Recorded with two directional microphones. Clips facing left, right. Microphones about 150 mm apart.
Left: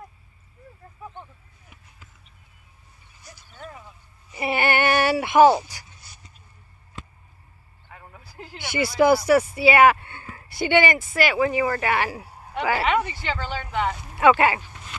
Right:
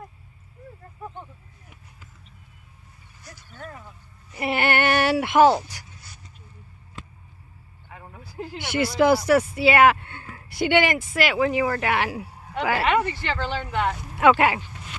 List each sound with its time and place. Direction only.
4.3 s speech: 5° left (ahead or behind)
7.9 s speech: centre (ahead or behind)